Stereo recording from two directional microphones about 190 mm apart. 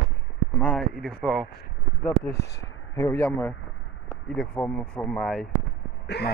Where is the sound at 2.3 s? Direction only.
60° left (ahead or behind).